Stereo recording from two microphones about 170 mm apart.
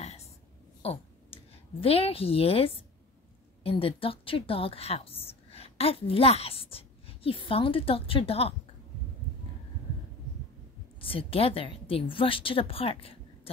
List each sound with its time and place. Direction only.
0.8 s a woman's voice: 35° left (ahead or behind)
11.0 s a woman's voice: 30° left (ahead or behind)